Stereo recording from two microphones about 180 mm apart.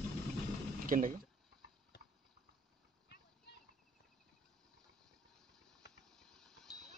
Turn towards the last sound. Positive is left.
turn(degrees=0)  # may be behind; listen again after turning